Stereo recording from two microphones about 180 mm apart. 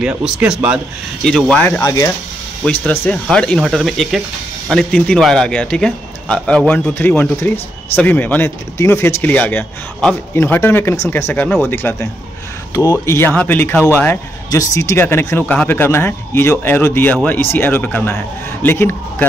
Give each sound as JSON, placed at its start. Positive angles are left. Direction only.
{"t": 0.0, "sound": "speech", "side_deg": -5}
{"t": 1.7, "sound": "speech", "side_deg": 20}
{"t": 2.6, "sound": "a man's voice", "side_deg": 10}